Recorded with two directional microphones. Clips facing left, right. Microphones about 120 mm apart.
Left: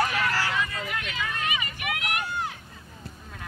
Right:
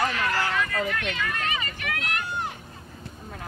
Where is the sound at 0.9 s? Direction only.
5° left (ahead or behind).